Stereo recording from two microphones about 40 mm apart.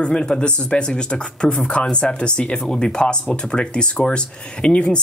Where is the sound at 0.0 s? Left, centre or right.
Left.